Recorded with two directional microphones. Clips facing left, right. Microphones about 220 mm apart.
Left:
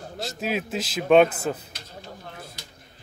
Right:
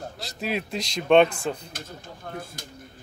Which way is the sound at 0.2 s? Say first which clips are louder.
Left 2 dB; centre (ahead or behind).